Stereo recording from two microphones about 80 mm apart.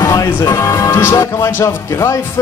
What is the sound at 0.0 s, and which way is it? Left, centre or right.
Speech, left.